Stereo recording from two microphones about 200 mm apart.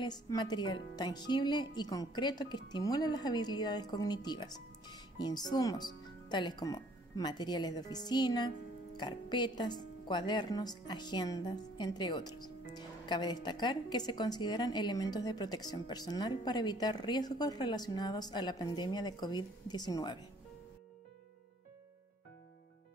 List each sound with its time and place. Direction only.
0.0 s speech: 20° left (ahead or behind)